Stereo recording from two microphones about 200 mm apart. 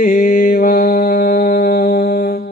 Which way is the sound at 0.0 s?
40° left (ahead or behind).